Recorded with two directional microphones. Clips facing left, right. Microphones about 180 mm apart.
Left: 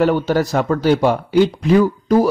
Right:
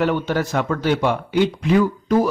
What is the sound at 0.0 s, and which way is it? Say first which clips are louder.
A man's voice: left 4 dB; 40° left (ahead or behind).